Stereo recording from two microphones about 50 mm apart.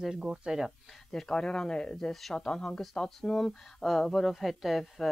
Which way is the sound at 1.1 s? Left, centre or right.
Centre.